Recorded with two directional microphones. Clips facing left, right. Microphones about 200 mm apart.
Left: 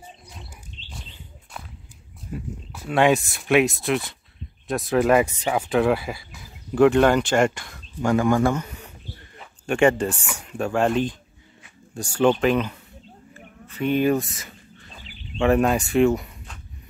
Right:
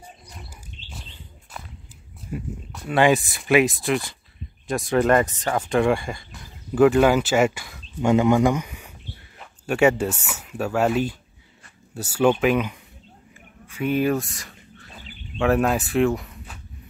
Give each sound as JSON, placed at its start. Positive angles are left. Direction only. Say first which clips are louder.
{"t": 2.3, "sound": "speech", "louder": "right 2 dB", "side_deg": -10}
{"t": 2.7, "sound": "speech", "louder": "even", "side_deg": 0}
{"t": 8.0, "sound": "speech", "louder": "right 2 dB", "side_deg": -20}
{"t": 13.7, "sound": "a sound", "louder": "left 1 dB", "side_deg": -5}
{"t": 15.3, "sound": "speech", "louder": "left 1 dB", "side_deg": 0}